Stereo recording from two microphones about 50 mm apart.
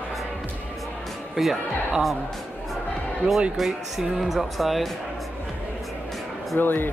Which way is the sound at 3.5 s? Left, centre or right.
Centre.